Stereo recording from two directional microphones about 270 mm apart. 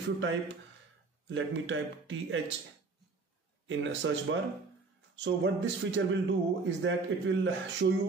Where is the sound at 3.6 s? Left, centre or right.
Right.